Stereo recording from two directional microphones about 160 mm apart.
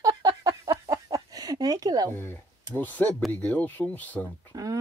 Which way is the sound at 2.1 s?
15° left (ahead or behind).